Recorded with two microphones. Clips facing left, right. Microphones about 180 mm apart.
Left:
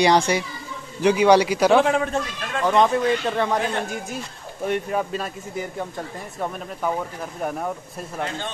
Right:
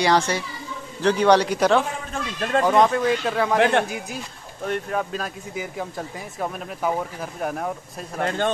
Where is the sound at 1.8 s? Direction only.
70° left (ahead or behind).